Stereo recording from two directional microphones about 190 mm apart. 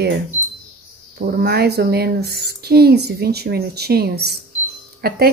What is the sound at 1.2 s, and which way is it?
Speech, 55° right (ahead or behind).